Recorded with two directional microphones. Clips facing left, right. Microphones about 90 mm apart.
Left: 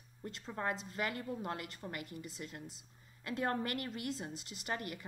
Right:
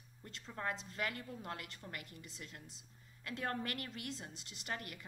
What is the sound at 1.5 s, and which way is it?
A woman's voice, 5° left (ahead or behind).